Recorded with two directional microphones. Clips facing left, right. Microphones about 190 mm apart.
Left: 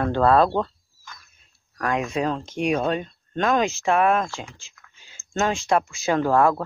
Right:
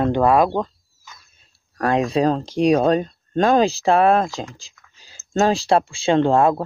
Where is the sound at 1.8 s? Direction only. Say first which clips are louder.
Right 6 dB; 35° right (ahead or behind).